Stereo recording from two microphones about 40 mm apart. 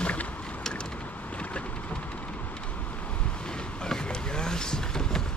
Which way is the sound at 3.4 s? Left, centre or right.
Centre.